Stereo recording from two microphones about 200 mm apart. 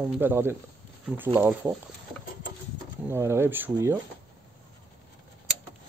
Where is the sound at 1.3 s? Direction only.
5° right (ahead or behind).